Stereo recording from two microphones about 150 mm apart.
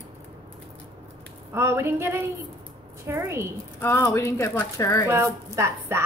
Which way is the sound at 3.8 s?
15° left (ahead or behind).